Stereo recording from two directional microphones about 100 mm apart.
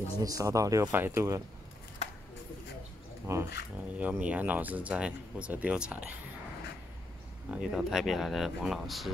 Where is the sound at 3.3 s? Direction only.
35° right (ahead or behind).